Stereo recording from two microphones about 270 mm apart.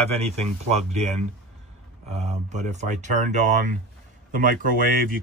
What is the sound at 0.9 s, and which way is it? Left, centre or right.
Speech, right.